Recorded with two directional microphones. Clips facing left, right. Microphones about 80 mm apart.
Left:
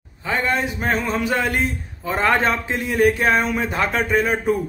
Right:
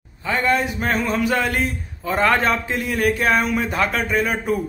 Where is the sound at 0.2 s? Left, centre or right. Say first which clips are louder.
Right 2 dB; left.